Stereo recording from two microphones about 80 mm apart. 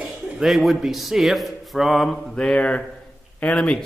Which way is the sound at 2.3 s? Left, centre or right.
Centre.